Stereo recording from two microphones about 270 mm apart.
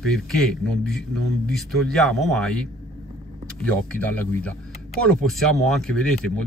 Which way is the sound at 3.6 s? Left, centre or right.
Centre.